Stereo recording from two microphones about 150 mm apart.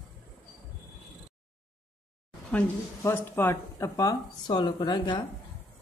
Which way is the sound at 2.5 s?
15° left (ahead or behind).